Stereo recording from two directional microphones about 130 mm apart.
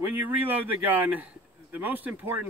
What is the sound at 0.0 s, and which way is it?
Speech, 15° right (ahead or behind).